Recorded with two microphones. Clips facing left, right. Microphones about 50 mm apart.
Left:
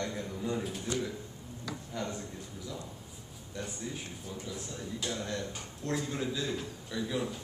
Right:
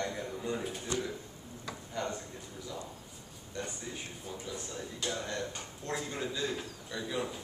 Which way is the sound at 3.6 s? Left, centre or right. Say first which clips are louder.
Left 1 dB; centre.